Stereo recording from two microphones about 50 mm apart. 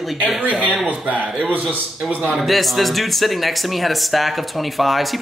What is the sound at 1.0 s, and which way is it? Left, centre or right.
Speech, right.